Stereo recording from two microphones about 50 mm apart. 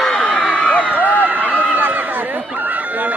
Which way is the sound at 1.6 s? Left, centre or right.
Right.